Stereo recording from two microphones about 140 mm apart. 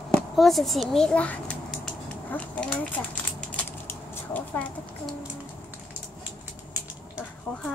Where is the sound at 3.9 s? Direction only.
10° left (ahead or behind).